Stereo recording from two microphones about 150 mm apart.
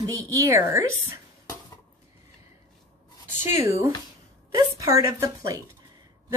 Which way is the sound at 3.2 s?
15° right (ahead or behind).